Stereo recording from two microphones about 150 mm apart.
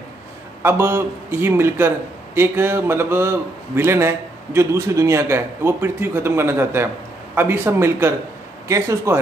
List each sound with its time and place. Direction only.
0.6 s a man's voice: 15° right (ahead or behind)